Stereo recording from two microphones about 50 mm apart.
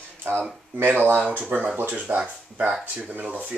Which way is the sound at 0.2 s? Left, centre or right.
Right.